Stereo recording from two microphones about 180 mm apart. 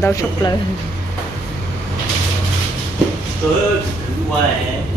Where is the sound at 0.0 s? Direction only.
15° left (ahead or behind).